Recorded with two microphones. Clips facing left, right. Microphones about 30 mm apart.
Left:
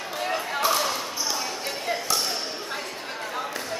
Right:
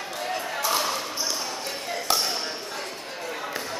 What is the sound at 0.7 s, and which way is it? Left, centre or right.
Basketball bounce, centre.